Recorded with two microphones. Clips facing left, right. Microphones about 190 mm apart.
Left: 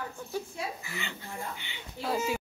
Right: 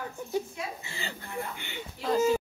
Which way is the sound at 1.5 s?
50° right (ahead or behind).